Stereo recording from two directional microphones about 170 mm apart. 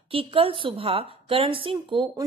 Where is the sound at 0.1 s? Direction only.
35° right (ahead or behind).